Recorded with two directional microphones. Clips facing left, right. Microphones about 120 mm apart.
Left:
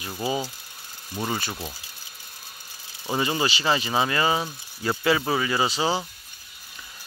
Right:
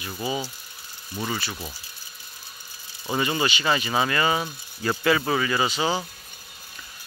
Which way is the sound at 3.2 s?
25° left (ahead or behind).